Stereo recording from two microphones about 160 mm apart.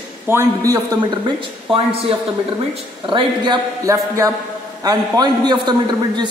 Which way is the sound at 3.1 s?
30° right (ahead or behind).